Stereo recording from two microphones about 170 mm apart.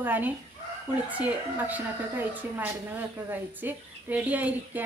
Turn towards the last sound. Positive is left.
turn(degrees=-10)  # may be behind; listen again after turning